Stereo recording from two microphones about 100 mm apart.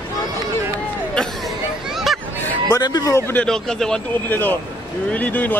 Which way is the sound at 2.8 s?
40° left (ahead or behind).